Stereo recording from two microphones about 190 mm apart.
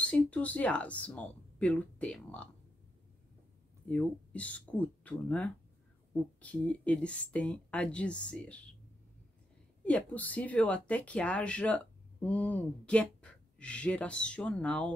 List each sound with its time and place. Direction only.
0.0 s speech: 5° left (ahead or behind)
3.9 s speech: 5° left (ahead or behind)
9.8 s speech: 5° left (ahead or behind)